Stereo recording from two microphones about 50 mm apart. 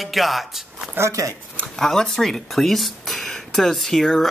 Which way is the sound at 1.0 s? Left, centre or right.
Right.